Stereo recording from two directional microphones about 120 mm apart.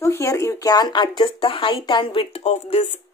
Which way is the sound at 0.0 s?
25° left (ahead or behind).